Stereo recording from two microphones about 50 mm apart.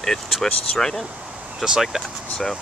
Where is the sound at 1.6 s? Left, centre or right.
Centre.